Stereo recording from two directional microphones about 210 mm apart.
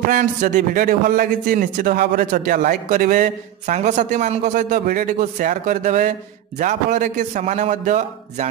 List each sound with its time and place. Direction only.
0.1 s a man's voice: 35° right (ahead or behind)